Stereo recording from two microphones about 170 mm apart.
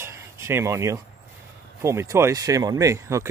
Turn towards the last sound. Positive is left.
turn(degrees=-15)  # may be behind; listen again after turning